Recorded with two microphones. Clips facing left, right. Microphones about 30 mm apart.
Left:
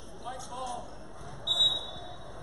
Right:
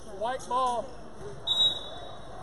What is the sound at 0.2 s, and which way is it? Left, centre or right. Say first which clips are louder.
Speech: right 11 dB; right.